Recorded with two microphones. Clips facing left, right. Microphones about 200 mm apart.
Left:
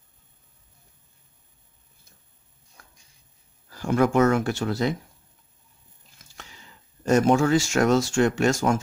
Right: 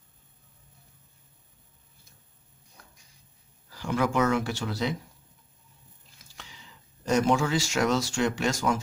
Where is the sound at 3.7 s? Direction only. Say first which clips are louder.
Left 6 dB; 45° left (ahead or behind).